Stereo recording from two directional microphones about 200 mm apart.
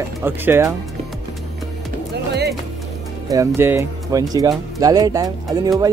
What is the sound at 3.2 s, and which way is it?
Speech, 15° right (ahead or behind).